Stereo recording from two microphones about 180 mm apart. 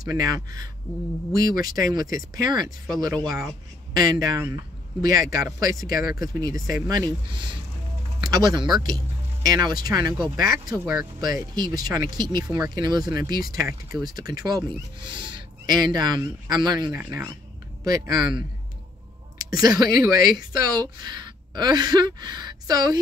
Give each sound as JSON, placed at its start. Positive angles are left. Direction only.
{"t": 0.0, "sound": "speech", "side_deg": -20}